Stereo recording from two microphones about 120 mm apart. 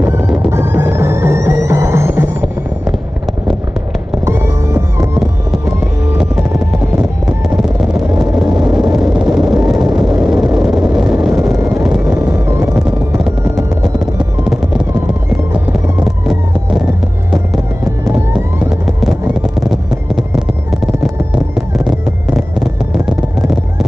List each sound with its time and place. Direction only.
0.0 s music: 20° right (ahead or behind)
4.3 s music: 20° right (ahead or behind)
7.4 s a sound: 5° right (ahead or behind)
8.9 s vehicle: 5° right (ahead or behind)
11.5 s vehicle: 25° right (ahead or behind)
13.9 s music: 5° right (ahead or behind)
16.0 s emergency vehicle: 5° right (ahead or behind)
19.7 s music: 5° right (ahead or behind)